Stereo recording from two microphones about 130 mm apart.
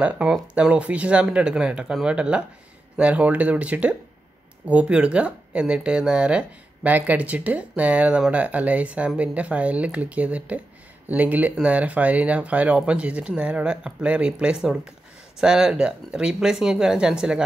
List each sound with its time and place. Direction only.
0.0 s speech: 10° right (ahead or behind)